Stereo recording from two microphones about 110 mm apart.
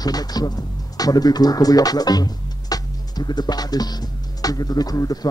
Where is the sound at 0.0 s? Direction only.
35° left (ahead or behind).